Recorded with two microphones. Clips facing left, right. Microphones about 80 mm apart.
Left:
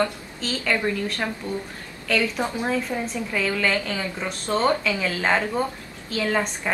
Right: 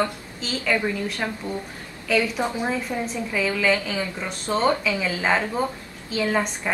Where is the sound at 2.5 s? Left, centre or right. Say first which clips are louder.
Even; centre.